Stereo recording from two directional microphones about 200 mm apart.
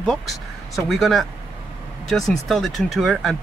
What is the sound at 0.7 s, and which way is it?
Speech, centre (ahead or behind).